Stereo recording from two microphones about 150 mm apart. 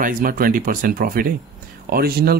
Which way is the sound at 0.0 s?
70° right (ahead or behind).